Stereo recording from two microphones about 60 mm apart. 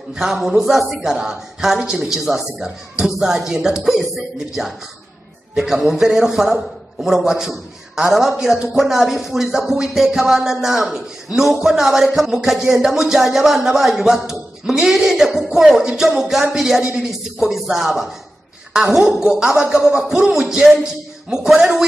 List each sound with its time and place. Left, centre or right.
0.1 s a man's voice: centre